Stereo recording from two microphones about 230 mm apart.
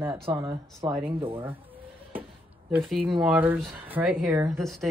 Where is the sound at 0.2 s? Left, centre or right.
Right.